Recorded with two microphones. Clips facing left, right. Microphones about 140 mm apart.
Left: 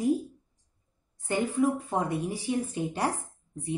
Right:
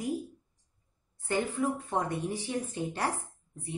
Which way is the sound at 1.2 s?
15° left (ahead or behind).